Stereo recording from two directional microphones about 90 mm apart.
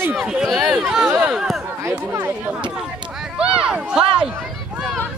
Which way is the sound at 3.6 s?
10° right (ahead or behind).